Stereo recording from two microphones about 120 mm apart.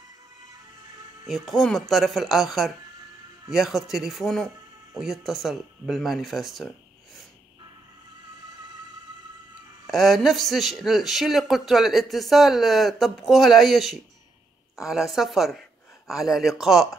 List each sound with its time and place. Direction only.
1.2 s a man's voice: centre (ahead or behind)
9.8 s a man's voice: centre (ahead or behind)